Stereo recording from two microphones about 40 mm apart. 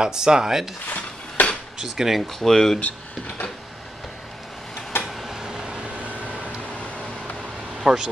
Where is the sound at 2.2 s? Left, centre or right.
Centre.